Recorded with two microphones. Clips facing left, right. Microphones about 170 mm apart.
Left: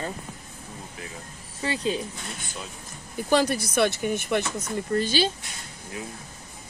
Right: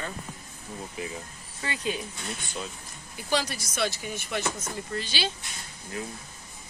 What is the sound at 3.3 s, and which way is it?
Speech, 55° left (ahead or behind).